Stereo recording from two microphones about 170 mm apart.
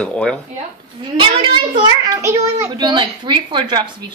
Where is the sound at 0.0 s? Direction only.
5° left (ahead or behind).